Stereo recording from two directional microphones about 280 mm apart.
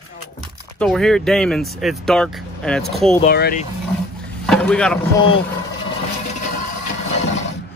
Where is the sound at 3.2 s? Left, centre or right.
Left.